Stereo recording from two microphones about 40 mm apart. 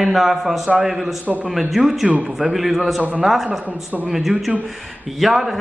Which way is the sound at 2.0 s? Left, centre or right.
Right.